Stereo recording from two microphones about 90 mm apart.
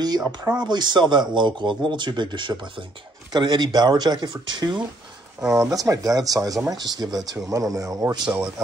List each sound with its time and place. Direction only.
0.0 s speech: 50° right (ahead or behind)
5.5 s speech: 40° right (ahead or behind)